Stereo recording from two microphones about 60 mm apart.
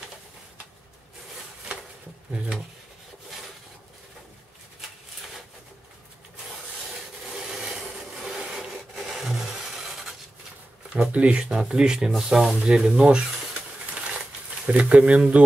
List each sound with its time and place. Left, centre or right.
8.2 s rub: centre
11.1 s speech: right
11.4 s speech: centre
12.6 s speech: centre
14.7 s speech: right